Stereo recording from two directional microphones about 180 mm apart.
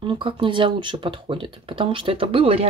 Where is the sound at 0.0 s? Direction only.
30° right (ahead or behind).